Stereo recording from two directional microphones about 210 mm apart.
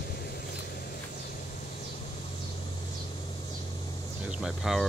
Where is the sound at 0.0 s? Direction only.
50° left (ahead or behind).